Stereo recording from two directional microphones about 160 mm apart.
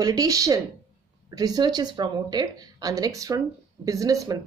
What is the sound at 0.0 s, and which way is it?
Speech, 20° right (ahead or behind).